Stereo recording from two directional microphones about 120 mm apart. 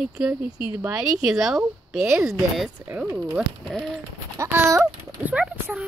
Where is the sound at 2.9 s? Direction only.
15° right (ahead or behind).